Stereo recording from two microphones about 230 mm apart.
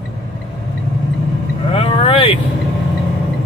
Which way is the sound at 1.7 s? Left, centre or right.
Left.